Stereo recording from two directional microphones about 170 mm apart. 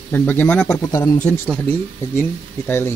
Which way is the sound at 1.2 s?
10° left (ahead or behind).